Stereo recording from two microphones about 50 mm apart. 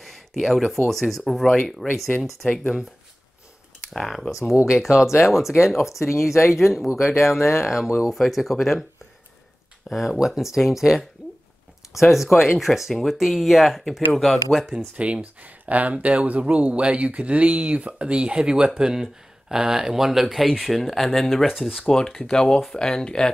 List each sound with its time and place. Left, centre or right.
0.0 s speech: centre
3.9 s speech: centre
4.7 s speech: centre
9.8 s speech: centre
15.0 s speech: right; by 21.7 s centre
21.7 s speech: centre